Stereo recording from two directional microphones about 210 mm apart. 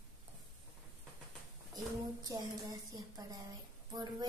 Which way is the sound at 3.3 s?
20° right (ahead or behind).